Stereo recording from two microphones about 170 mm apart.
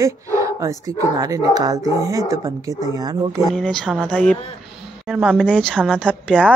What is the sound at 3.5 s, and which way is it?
Speech, 5° left (ahead or behind).